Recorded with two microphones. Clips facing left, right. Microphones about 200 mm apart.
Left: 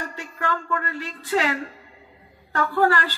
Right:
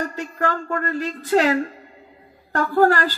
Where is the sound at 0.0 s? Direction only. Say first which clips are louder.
Right 6 dB; 40° right (ahead or behind).